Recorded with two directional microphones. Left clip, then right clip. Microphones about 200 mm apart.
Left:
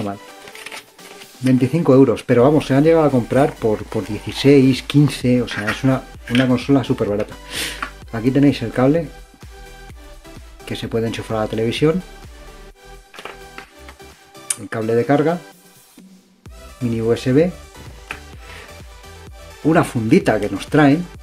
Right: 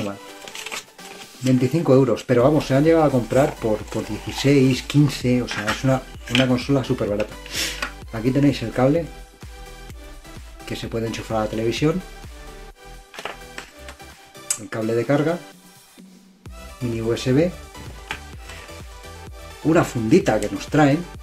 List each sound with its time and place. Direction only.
1.4 s speech: 45° left (ahead or behind)
10.6 s speech: 45° left (ahead or behind)
14.5 s speech: 45° left (ahead or behind)
17.1 s speech: 45° left (ahead or behind)
19.7 s speech: 45° left (ahead or behind)